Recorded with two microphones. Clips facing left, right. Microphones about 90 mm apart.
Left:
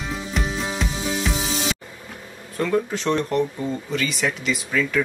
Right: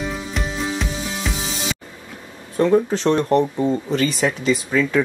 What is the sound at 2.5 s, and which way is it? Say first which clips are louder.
Speech: right 6 dB; 25° right (ahead or behind).